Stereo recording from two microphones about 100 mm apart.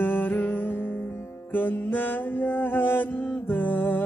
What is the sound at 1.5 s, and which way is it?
Mantra, 20° left (ahead or behind).